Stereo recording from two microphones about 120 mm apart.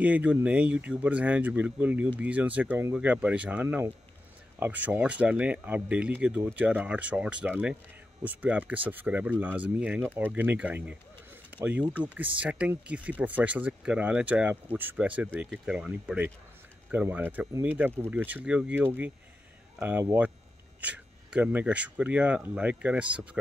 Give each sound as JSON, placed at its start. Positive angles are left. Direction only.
{"t": 0.0, "sound": "speech", "side_deg": -10}
{"t": 3.6, "sound": "speech", "side_deg": -20}